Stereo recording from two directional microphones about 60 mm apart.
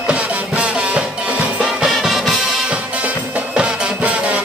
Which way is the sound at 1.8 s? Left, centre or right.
Centre.